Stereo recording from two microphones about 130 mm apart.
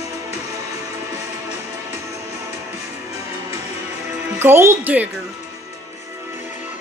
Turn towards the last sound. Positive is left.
turn(degrees=-15)  # may be behind; listen again after turning